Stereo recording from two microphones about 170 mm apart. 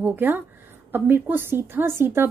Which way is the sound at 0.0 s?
10° right (ahead or behind).